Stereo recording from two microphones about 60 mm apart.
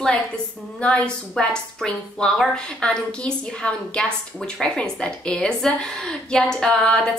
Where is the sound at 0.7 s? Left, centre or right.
Centre.